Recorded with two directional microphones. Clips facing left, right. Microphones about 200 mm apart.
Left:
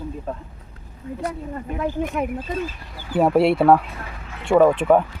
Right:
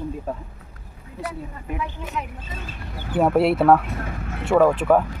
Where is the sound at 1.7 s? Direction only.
50° left (ahead or behind).